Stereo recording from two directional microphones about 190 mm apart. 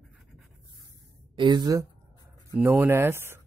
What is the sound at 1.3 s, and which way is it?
Speech, 25° right (ahead or behind).